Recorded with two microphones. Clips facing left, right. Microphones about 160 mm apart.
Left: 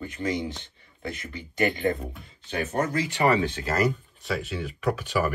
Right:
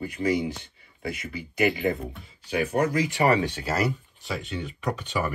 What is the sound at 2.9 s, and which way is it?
Speech, 15° right (ahead or behind).